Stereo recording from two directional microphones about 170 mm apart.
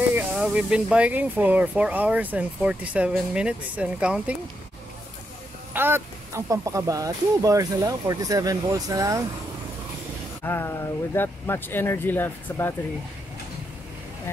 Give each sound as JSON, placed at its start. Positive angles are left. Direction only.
{"t": 0.1, "sound": "speech", "side_deg": -5}
{"t": 5.7, "sound": "speech", "side_deg": -15}
{"t": 10.4, "sound": "speech", "side_deg": 15}